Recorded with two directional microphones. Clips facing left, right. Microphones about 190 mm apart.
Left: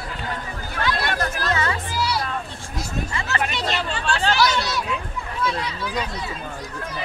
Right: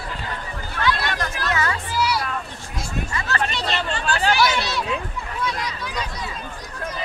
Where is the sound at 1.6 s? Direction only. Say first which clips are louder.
Right 1 dB; 25° left (ahead or behind).